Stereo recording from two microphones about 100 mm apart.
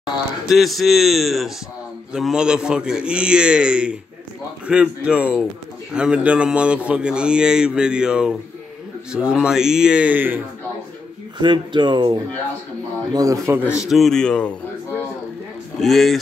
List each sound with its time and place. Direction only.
0.5 s speech: centre (ahead or behind); by 10.4 s 20° right (ahead or behind)
11.3 s speech: 50° right (ahead or behind)
13.1 s speech: 35° right (ahead or behind)
13.6 s speech: 10° right (ahead or behind); by 14.6 s 10° left (ahead or behind)
15.8 s speech: centre (ahead or behind)